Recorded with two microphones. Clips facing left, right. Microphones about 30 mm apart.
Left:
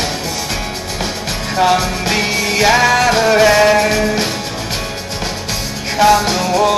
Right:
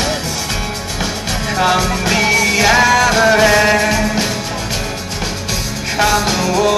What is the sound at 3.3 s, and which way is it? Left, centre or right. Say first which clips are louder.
Music: left 4 dB; centre.